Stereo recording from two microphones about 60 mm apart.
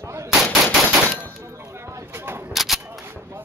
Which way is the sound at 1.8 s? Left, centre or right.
Right.